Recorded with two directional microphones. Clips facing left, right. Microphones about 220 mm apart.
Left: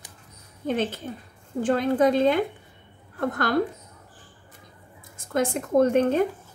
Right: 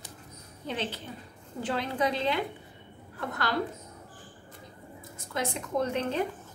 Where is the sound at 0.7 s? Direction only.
50° left (ahead or behind).